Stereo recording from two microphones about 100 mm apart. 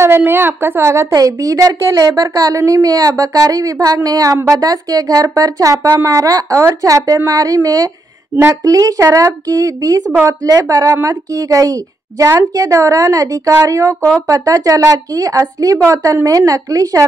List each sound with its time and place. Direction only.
0.0 s a woman's voice: 20° right (ahead or behind)